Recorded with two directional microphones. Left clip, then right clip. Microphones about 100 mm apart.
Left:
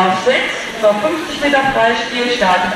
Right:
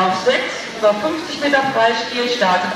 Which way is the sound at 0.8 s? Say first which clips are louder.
Left 2 dB; 15° left (ahead or behind).